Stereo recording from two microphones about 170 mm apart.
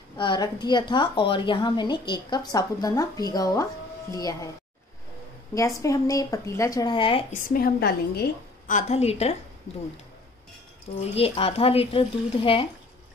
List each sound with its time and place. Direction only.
0.2 s a woman's voice: 25° left (ahead or behind)
5.8 s a woman's voice: 20° left (ahead or behind)
7.4 s a woman's voice: 60° left (ahead or behind)
8.7 s speech: 40° left (ahead or behind)
11.1 s speech: 35° left (ahead or behind)